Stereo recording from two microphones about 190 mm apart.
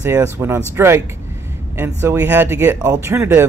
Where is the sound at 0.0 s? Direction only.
15° right (ahead or behind).